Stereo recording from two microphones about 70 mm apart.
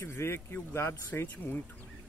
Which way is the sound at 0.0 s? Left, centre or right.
Left.